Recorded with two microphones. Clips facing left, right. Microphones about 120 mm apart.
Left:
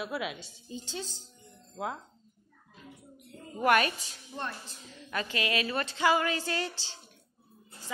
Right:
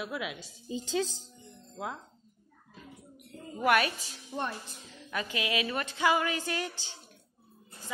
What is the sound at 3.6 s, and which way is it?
A woman's voice, 5° right (ahead or behind).